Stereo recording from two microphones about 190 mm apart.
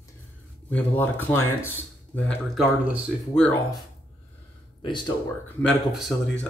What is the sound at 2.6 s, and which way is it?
Speech, centre (ahead or behind).